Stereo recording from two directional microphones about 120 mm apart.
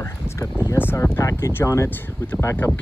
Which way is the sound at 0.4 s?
25° left (ahead or behind).